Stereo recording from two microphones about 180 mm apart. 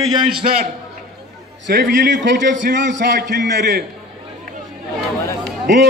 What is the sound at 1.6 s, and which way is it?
A man's voice, 85° right.